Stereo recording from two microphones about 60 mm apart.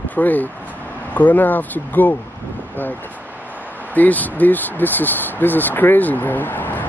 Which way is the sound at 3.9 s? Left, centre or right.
Left.